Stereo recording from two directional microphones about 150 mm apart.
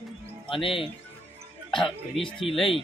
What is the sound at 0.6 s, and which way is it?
Speech, 35° left (ahead or behind).